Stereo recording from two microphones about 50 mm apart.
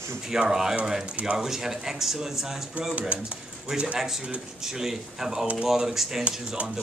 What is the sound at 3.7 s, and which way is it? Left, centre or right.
Speech, right.